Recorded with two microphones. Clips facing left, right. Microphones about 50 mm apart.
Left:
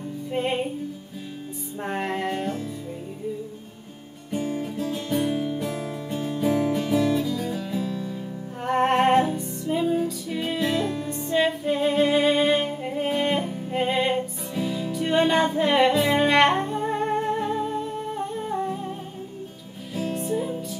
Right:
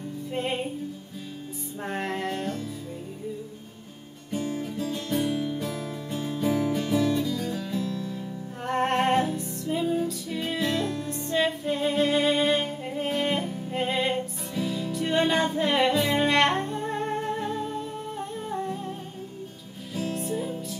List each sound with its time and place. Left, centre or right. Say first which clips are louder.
0.3 s music: left 4 dB; centre
1.8 s music: left 3 dB; centre
4.3 s music: left 2 dB; centre
20.0 s music: left 3 dB; centre